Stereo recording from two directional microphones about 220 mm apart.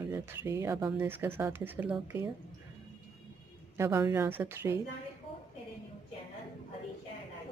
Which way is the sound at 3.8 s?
10° right (ahead or behind).